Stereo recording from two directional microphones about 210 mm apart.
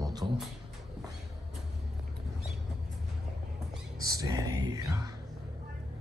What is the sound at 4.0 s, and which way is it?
Speech, 15° right (ahead or behind).